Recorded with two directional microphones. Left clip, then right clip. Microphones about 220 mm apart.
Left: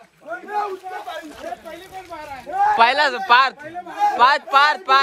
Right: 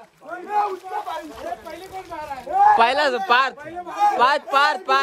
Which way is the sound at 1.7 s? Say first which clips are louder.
Right 1 dB; 25° right (ahead or behind).